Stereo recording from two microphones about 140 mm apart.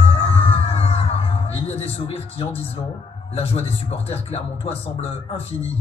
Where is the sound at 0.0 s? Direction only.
45° left (ahead or behind).